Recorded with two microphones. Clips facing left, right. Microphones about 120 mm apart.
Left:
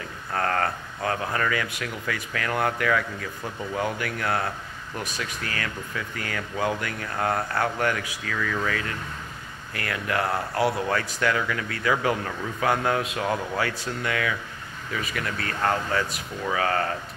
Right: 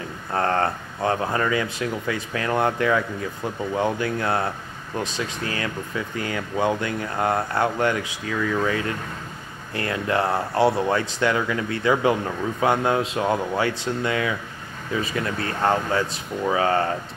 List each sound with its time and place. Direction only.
0.3 s speech: 25° right (ahead or behind)